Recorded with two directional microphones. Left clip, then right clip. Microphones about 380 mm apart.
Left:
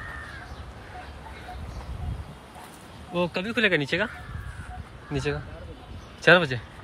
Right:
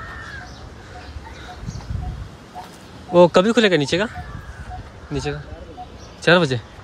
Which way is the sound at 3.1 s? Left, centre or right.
Centre.